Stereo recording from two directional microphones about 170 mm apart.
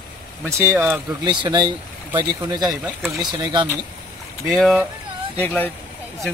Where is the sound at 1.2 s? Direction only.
25° right (ahead or behind).